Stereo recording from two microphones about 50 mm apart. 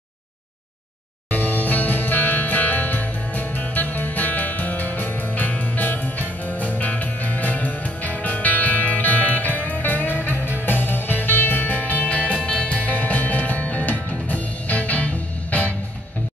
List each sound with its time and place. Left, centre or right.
1.3 s music: left